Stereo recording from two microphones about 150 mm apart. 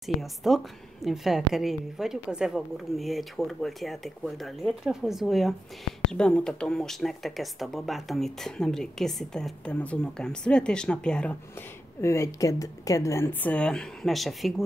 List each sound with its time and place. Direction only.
0.0 s speech: centre (ahead or behind)
12.0 s a woman's voice: 20° left (ahead or behind); by 14.5 s centre (ahead or behind)